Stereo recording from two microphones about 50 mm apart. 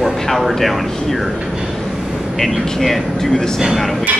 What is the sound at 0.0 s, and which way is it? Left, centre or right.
Speech, centre.